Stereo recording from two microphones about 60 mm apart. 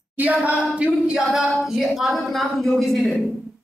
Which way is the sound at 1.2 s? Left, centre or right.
Centre.